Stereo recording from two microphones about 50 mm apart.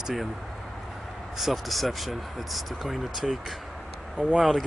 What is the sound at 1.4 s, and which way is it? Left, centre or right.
Speech, centre.